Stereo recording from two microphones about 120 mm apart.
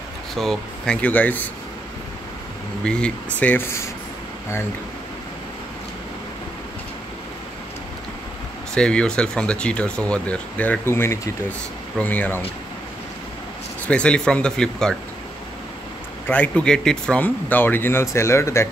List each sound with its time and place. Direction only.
0.4 s speech: 5° left (ahead or behind)
2.8 s speech: 10° left (ahead or behind)
8.7 s speech: 5° left (ahead or behind)
13.8 s speech: 10° left (ahead or behind)
16.3 s speech: 10° left (ahead or behind)